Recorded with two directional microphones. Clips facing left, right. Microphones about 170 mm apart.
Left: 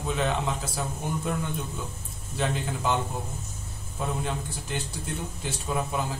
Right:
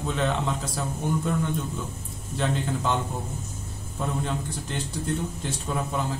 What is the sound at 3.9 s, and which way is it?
A man's voice, 5° left (ahead or behind).